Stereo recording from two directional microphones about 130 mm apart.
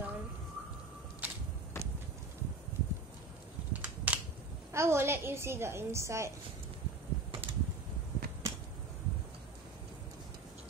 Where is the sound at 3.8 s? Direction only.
10° right (ahead or behind).